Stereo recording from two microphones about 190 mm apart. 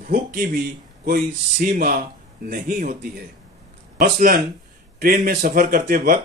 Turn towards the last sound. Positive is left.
turn(degrees=-50)  # may be behind; listen again after turning